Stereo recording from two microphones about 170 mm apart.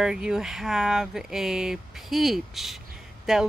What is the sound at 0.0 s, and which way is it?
Speech, 5° right (ahead or behind).